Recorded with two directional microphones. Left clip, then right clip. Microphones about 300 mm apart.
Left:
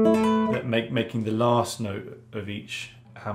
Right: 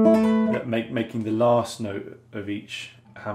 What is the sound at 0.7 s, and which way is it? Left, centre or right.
Speech, centre.